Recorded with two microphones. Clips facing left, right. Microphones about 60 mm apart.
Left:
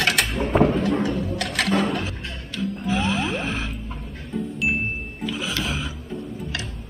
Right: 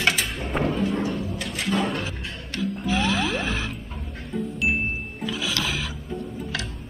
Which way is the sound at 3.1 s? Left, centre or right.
Right.